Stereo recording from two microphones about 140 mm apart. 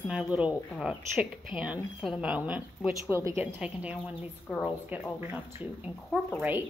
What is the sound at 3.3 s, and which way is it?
Speech, 20° right (ahead or behind).